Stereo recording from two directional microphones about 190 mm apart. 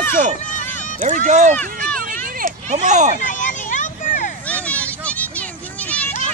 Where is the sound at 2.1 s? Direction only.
45° right (ahead or behind).